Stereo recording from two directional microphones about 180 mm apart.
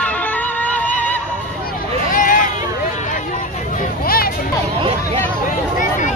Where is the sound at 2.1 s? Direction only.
45° left (ahead or behind).